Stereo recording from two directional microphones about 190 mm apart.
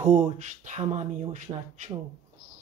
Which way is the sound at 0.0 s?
35° right (ahead or behind).